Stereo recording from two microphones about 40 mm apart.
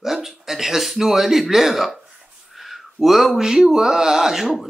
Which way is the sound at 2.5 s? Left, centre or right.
Centre.